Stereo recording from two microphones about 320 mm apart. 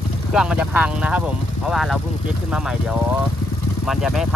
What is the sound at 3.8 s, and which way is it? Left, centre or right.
Speech, centre.